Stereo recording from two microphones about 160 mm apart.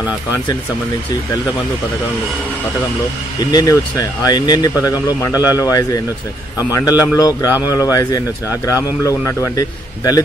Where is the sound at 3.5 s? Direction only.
25° left (ahead or behind).